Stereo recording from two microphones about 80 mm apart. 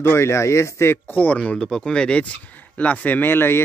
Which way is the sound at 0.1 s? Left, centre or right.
Left.